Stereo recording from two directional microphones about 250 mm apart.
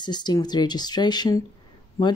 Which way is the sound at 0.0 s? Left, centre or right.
Centre.